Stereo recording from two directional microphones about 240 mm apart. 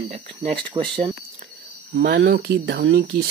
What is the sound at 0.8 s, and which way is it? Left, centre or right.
Speech, centre.